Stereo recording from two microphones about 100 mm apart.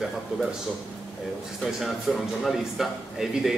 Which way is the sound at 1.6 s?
5° right (ahead or behind).